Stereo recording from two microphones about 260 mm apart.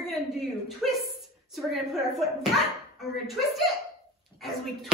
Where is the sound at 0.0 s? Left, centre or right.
Centre.